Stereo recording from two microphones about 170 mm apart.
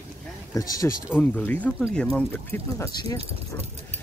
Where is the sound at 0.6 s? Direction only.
20° left (ahead or behind).